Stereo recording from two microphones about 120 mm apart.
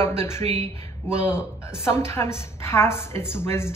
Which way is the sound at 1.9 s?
20° left (ahead or behind).